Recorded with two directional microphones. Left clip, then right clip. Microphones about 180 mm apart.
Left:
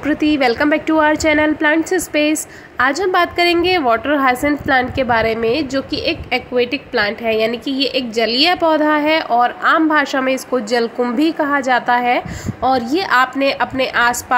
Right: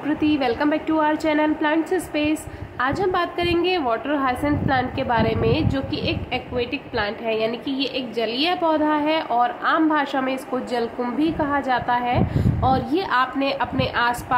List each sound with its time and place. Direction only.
0.0 s a woman's voice: 25° left (ahead or behind)